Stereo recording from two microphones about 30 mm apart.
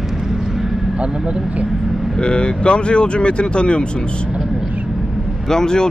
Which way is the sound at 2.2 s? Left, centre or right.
Left.